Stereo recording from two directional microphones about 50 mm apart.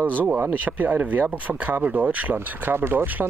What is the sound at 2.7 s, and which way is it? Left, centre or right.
Speech, right.